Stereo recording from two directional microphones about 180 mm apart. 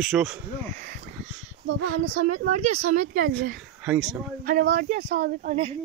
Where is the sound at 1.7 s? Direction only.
90° right.